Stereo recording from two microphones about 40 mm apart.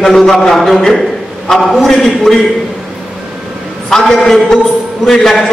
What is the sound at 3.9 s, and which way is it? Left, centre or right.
Speech, centre.